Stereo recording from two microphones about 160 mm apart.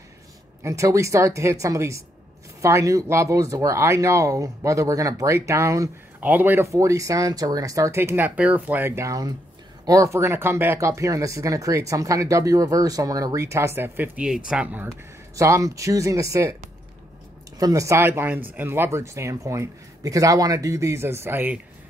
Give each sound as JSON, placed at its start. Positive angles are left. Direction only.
{"t": 0.7, "sound": "speech", "side_deg": -20}
{"t": 15.3, "sound": "speech", "side_deg": -20}
{"t": 17.6, "sound": "speech", "side_deg": -20}